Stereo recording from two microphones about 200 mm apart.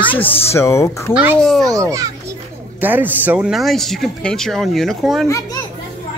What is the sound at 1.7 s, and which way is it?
A child's voice, 15° right (ahead or behind).